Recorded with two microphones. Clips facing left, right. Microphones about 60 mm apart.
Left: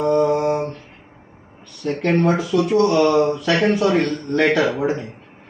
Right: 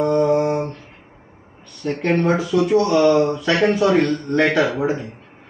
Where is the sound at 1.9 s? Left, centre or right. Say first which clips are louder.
Even; centre.